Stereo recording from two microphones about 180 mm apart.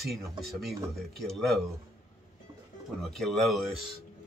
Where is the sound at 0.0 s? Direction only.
Centre (ahead or behind).